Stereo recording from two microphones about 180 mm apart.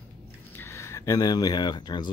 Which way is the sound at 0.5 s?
15° left (ahead or behind).